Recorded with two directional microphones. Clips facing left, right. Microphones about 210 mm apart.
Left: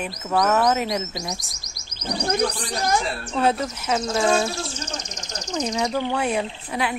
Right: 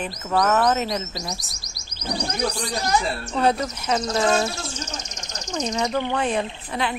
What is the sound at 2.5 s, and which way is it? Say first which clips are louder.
Speech: even; 50° left (ahead or behind).